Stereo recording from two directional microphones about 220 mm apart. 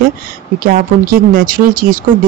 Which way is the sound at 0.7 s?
40° right (ahead or behind).